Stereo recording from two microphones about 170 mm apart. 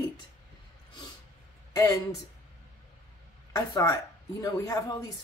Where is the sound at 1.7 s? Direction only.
20° left (ahead or behind).